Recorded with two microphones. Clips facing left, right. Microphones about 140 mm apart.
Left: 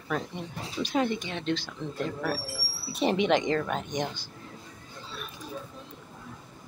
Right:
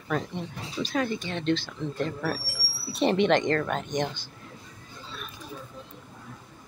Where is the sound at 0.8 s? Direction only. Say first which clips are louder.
Left 1 dB; 20° left (ahead or behind).